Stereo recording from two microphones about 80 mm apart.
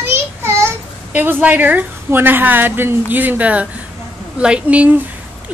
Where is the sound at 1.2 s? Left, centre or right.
Right.